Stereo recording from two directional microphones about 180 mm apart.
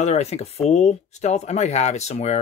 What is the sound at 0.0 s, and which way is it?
Speech, 35° left (ahead or behind).